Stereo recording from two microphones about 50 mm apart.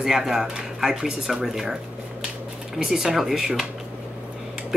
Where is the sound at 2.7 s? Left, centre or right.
Centre.